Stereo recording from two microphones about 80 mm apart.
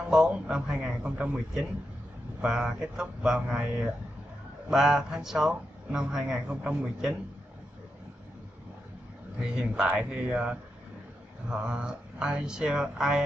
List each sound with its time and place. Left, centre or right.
0.1 s speech: centre
9.4 s speech: centre